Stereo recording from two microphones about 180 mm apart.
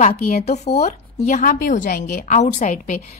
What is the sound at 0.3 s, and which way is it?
A woman's voice, 40° left (ahead or behind).